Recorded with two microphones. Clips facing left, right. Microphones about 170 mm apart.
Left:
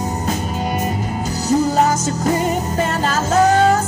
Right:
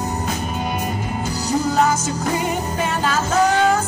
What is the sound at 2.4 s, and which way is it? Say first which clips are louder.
Music: left 3 dB; 40° left (ahead or behind).